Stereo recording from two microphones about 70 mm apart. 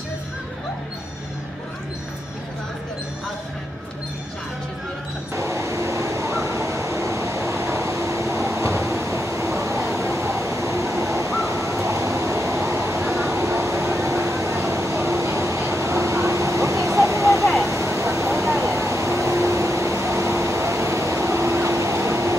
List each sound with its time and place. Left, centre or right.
5.3 s train: right
11.4 s vehicle: right
17.6 s a sound: right
18.6 s vehicle: right